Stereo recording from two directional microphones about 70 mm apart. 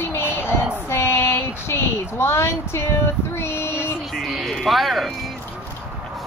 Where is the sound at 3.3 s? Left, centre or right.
Left.